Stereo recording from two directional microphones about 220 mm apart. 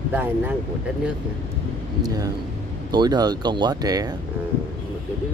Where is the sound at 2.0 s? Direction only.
15° right (ahead or behind).